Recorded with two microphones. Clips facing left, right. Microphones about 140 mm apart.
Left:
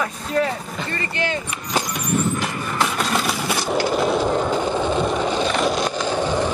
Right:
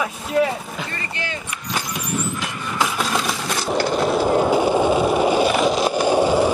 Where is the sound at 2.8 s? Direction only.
Centre (ahead or behind).